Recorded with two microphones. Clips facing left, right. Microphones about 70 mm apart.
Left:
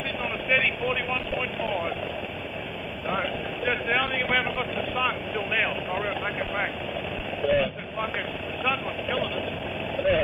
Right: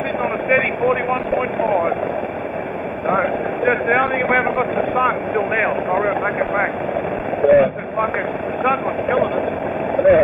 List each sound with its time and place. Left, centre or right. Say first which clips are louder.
0.2 s vehicle: right 8 dB; right
3.1 s speech: right 10 dB; right
7.4 s vehicle: right 11 dB; right
8.6 s speech: right 10 dB; right
9.9 s vehicle: right 11 dB; right